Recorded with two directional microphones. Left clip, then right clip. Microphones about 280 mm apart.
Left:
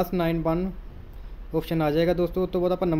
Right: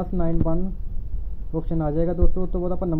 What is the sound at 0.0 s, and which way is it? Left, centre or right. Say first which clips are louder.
Speech: left 2 dB; centre.